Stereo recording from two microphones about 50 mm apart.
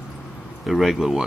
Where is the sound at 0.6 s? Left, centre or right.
Centre.